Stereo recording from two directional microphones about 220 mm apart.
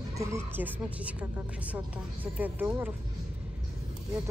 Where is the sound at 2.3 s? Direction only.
10° right (ahead or behind).